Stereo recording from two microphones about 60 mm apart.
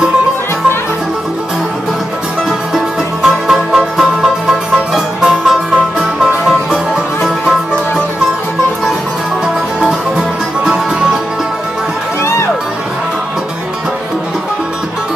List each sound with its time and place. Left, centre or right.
2.7 s music: centre
9.8 s music: centre
12.2 s music: left